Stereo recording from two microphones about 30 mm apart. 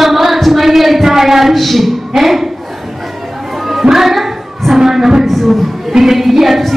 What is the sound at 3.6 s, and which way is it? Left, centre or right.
Music, centre.